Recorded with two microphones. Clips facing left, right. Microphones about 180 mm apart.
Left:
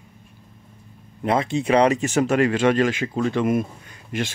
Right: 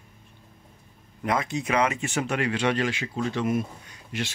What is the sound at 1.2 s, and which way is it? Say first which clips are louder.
Speech: left 6 dB; 30° left (ahead or behind).